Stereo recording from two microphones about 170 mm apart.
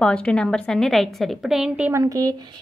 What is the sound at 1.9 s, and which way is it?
Speech, 20° right (ahead or behind).